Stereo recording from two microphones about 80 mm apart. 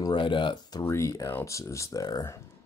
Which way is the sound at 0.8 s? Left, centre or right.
Left.